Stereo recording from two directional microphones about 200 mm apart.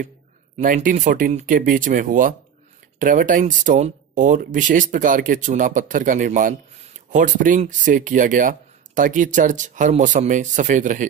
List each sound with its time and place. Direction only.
0.6 s speech: 40° right (ahead or behind)